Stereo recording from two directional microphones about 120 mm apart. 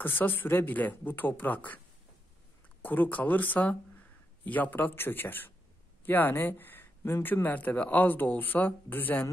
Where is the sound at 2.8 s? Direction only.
15° left (ahead or behind).